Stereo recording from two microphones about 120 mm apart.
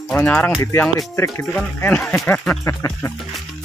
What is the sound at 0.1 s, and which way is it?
Speech, 10° left (ahead or behind).